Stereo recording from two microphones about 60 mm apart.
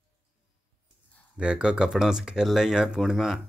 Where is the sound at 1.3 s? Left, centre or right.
Centre.